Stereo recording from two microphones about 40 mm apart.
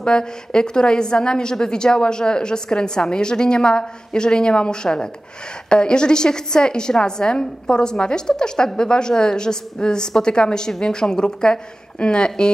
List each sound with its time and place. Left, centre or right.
0.0 s a woman's voice: left